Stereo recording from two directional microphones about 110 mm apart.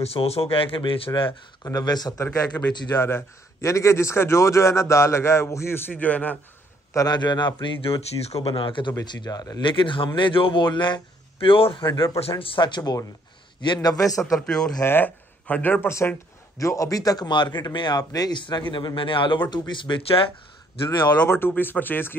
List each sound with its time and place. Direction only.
0.0 s speech: 65° left (ahead or behind)
1.6 s a man's voice: 35° left (ahead or behind)
2.2 s a man's voice: 15° left (ahead or behind)
6.9 s a man's voice: 35° left (ahead or behind)
7.6 s a man's voice: 55° left (ahead or behind); by 9.7 s 35° left (ahead or behind)
9.7 s a man's voice: 50° left (ahead or behind); by 14.3 s 30° left (ahead or behind)
14.3 s a man's voice: 5° left (ahead or behind); by 20.2 s 60° left (ahead or behind)
21.2 s a man's voice: 20° left (ahead or behind)